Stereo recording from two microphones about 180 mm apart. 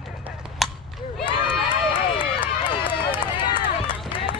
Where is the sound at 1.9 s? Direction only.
25° left (ahead or behind).